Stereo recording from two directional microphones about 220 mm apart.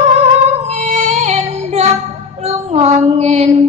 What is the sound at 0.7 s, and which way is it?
Music, 30° right (ahead or behind).